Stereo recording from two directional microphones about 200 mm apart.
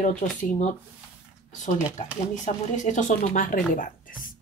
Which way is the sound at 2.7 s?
40° left (ahead or behind).